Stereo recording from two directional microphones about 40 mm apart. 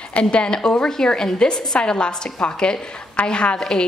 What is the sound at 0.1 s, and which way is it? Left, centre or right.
A woman's voice, left.